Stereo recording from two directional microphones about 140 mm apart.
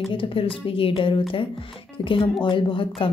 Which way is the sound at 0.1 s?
40° left (ahead or behind).